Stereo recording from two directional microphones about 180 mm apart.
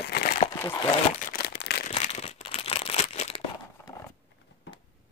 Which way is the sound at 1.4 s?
70° left (ahead or behind).